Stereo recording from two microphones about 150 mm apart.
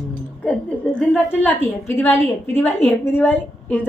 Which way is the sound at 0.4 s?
5° left (ahead or behind).